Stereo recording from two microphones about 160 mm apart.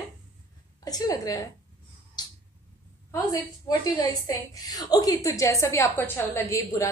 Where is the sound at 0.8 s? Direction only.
25° left (ahead or behind).